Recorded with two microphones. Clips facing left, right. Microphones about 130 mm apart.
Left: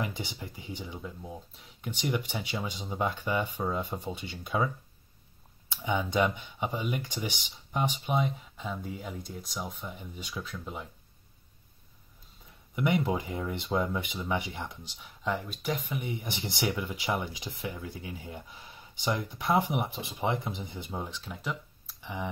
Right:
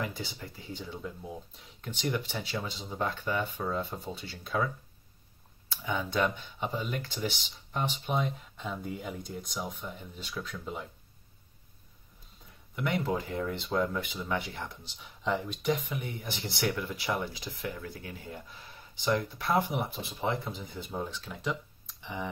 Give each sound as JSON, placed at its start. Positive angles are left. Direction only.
{"t": 0.0, "sound": "speech", "side_deg": 20}
{"t": 5.7, "sound": "speech", "side_deg": 20}
{"t": 12.7, "sound": "speech", "side_deg": 15}
{"t": 15.0, "sound": "speech", "side_deg": 0}